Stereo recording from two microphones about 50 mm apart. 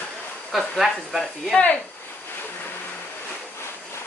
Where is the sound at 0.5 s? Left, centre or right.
Centre.